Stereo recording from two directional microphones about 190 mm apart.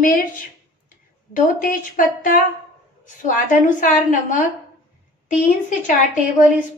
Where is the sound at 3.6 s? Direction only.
40° left (ahead or behind).